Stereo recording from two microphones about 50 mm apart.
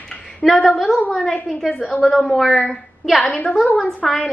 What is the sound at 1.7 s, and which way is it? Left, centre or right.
Speech, left.